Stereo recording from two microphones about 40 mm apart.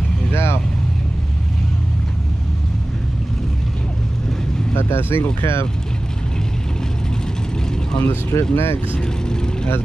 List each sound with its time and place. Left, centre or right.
0.3 s vehicle: left
4.7 s speech: left
5.4 s speech: left
8.0 s speech: left
9.0 s speech: centre